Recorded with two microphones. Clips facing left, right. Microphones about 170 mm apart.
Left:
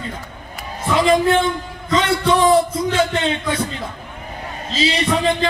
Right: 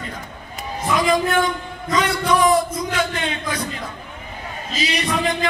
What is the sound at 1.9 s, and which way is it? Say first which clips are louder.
Speech: left 2 dB; 25° left (ahead or behind).